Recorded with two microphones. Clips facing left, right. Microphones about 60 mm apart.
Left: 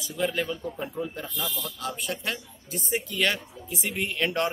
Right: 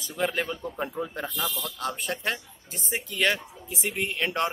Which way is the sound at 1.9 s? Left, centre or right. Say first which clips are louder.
Right 1 dB; right.